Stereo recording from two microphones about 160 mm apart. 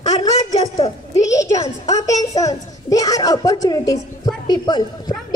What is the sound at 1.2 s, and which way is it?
A child's voice, 20° left (ahead or behind).